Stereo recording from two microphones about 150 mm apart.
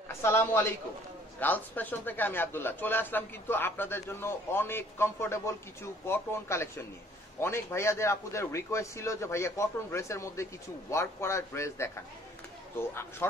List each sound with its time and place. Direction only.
0.2 s a man's voice: 15° left (ahead or behind)